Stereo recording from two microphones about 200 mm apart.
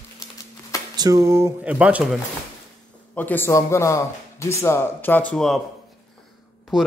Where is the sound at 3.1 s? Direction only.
10° left (ahead or behind).